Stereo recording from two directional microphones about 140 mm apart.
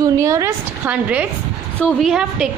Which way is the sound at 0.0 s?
25° right (ahead or behind).